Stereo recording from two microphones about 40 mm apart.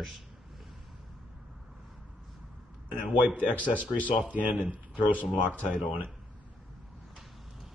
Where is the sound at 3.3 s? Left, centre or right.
Left.